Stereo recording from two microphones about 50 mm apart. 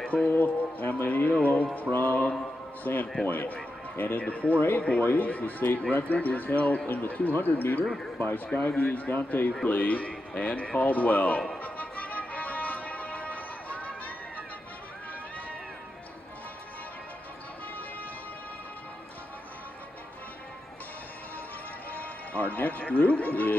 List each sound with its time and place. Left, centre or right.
0.3 s speech: left
4.2 s speech: left
7.8 s speech: centre
8.6 s speech: left
11.5 s music: left
21.9 s music: left